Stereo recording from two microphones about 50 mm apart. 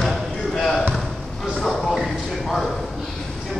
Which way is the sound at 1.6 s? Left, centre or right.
Centre.